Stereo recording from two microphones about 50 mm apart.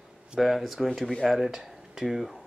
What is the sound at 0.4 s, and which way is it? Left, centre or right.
Speech, centre.